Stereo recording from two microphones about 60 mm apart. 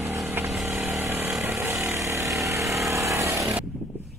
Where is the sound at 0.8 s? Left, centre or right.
Right.